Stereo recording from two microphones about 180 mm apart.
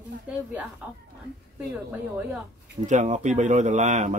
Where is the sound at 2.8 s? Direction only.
40° right (ahead or behind).